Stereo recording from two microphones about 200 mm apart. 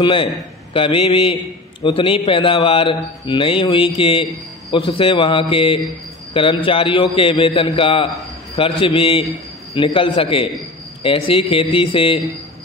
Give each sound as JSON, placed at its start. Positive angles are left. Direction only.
{"t": 0.0, "sound": "a man's voice", "side_deg": 25}